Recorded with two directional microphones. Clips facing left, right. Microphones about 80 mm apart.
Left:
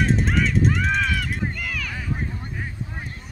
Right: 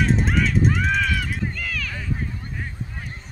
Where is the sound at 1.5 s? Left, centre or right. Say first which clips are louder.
Even; centre.